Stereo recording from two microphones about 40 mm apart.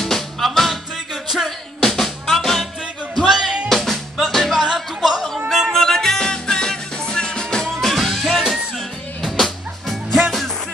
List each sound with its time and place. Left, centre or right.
0.0 s music: centre
1.8 s music: centre
3.2 s music: centre
3.6 s music: centre
5.5 s yodeling: centre
5.8 s music: centre